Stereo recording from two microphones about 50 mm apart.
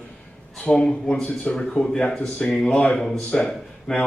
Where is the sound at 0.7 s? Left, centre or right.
Centre.